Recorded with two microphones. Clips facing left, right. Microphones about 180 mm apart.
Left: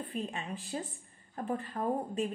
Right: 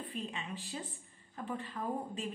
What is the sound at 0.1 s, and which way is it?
A woman's voice, 45° left (ahead or behind).